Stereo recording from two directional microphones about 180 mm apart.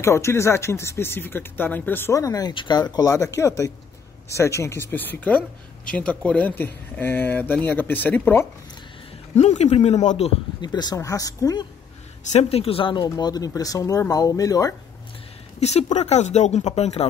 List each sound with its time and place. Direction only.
0.0 s speech: 15° left (ahead or behind)
9.3 s a man's voice: 40° left (ahead or behind)
10.7 s speech: 20° left (ahead or behind)
12.3 s speech: 35° left (ahead or behind); by 14.8 s 20° left (ahead or behind)
15.6 s a man's voice: 40° left (ahead or behind)